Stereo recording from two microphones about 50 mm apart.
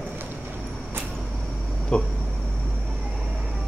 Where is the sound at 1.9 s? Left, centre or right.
Left.